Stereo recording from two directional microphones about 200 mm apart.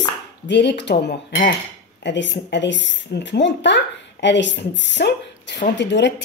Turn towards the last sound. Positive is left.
turn(degrees=60)  # may be behind; listen again after turning